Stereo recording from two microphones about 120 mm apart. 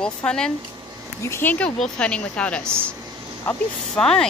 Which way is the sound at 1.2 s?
20° left (ahead or behind).